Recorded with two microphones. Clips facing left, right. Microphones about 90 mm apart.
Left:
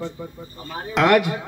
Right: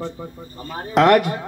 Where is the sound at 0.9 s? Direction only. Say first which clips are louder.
Right 3 dB; 45° right (ahead or behind).